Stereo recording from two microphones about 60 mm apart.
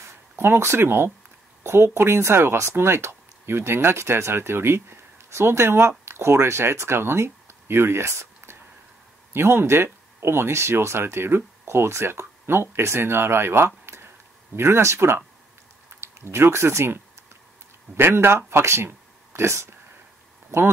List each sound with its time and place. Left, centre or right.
0.4 s speech: right